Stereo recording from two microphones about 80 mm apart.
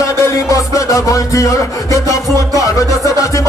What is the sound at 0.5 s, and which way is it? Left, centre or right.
Music, left.